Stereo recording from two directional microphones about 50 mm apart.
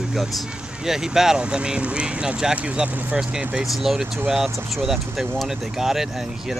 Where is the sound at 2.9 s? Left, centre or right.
Right.